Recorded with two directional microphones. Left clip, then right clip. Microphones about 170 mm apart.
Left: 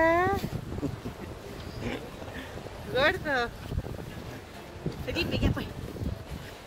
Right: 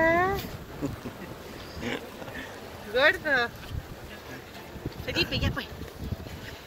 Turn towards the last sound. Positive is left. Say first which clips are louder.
# right 2 dB
turn(degrees=50)  # may be behind; listen again after turning